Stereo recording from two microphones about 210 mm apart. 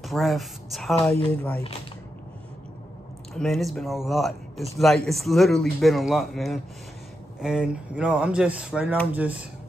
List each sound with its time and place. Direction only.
0.0 s speech: centre (ahead or behind)
3.3 s a man's voice: centre (ahead or behind)